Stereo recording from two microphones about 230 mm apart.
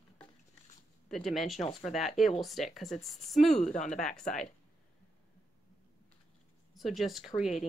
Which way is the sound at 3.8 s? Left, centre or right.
Left.